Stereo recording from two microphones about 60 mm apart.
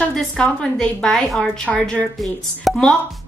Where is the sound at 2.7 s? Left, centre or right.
Centre.